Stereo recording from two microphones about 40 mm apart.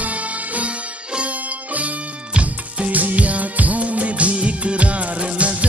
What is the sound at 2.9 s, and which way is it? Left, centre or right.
Music, right.